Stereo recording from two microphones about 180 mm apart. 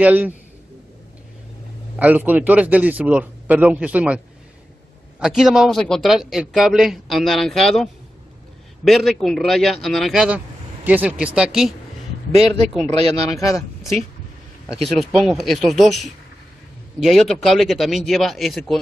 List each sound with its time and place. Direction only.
0.0 s speech: 10° right (ahead or behind)
2.0 s speech: 10° right (ahead or behind)
5.2 s speech: centre (ahead or behind)
12.8 s speech: 35° right (ahead or behind)
14.8 s speech: centre (ahead or behind)